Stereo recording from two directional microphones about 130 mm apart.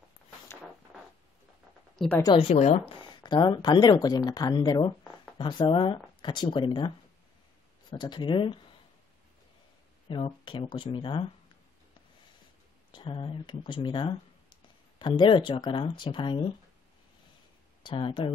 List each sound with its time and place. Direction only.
2.2 s speech: 45° left (ahead or behind)
2.5 s speech: 60° left (ahead or behind)
3.0 s speech: 35° left (ahead or behind)
7.9 s speech: 40° left (ahead or behind)
10.0 s speech: 40° left (ahead or behind)
12.9 s speech: 40° left (ahead or behind)
17.8 s speech: 40° left (ahead or behind)